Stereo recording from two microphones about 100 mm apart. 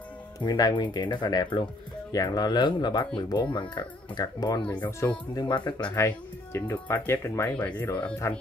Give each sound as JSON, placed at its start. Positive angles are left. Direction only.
{"t": 0.4, "sound": "speech", "side_deg": 40}
{"t": 4.6, "sound": "speech", "side_deg": 15}
{"t": 5.3, "sound": "speech", "side_deg": 45}
{"t": 5.9, "sound": "speech", "side_deg": 25}
{"t": 7.5, "sound": "speech", "side_deg": 15}